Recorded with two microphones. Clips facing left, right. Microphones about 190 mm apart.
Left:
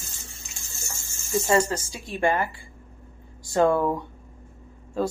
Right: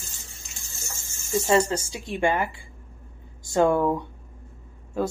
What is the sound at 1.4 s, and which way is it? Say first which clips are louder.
Speech: right 1 dB; 25° right (ahead or behind).